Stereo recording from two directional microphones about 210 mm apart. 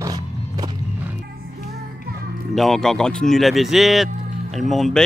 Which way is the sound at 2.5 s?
Centre (ahead or behind).